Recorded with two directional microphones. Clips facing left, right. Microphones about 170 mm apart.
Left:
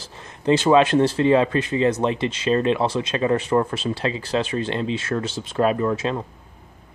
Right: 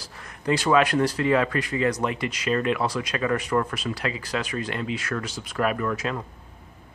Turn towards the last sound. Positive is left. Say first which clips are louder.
# left 5 dB
turn(degrees=25)  # may be behind; listen again after turning